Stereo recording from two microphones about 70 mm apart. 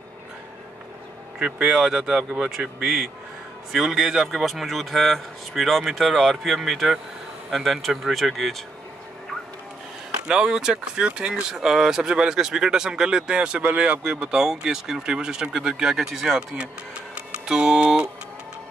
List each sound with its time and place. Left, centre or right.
1.4 s speech: centre
10.2 s speech: centre
16.3 s speech: centre